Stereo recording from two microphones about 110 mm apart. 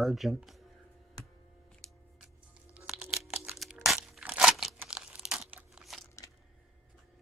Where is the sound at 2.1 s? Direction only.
10° right (ahead or behind).